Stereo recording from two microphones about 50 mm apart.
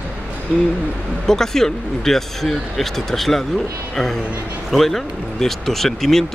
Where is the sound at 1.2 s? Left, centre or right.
Centre.